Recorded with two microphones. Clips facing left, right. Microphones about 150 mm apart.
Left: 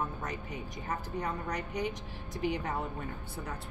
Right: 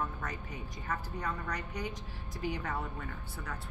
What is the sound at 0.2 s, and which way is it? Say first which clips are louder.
Speech: left 3 dB; 20° left (ahead or behind).